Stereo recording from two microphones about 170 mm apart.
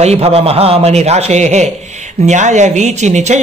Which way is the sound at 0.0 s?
40° right (ahead or behind).